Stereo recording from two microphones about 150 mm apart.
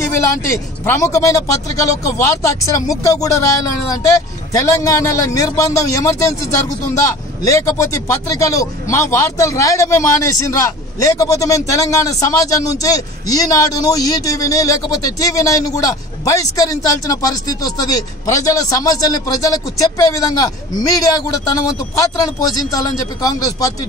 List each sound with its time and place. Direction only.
0.2 s speech: 20° left (ahead or behind)
7.4 s speech: 20° left (ahead or behind)